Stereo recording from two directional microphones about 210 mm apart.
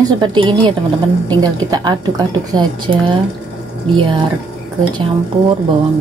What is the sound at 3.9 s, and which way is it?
Speech, 25° right (ahead or behind).